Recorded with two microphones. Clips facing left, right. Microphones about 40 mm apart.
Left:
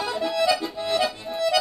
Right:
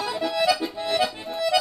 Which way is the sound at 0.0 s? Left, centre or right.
Centre.